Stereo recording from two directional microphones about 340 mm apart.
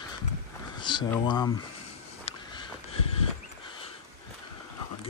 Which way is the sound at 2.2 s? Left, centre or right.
Centre.